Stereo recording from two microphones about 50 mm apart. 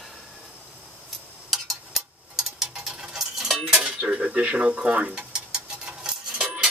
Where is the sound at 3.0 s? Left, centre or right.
Centre.